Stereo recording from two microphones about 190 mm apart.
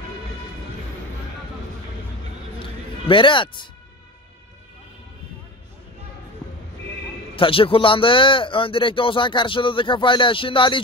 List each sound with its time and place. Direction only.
2.6 s music: 25° left (ahead or behind)
7.3 s speech: 30° left (ahead or behind)